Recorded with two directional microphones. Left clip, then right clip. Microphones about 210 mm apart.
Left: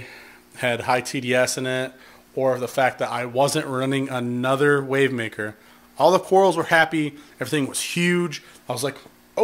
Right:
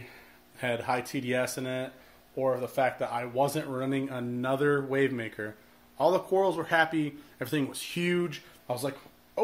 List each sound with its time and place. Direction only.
0.6 s a man's voice: 50° left (ahead or behind)